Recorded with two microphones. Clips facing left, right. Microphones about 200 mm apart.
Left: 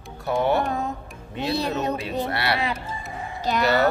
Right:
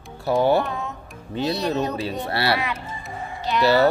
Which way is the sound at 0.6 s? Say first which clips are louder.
Left 3 dB; 40° left (ahead or behind).